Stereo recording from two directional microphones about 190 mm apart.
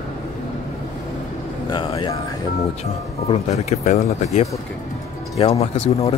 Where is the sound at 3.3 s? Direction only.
35° left (ahead or behind).